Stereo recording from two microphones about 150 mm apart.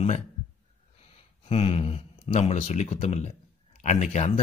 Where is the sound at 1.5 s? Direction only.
40° left (ahead or behind).